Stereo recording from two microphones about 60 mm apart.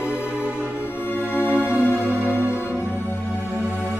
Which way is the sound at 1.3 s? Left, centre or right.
Left.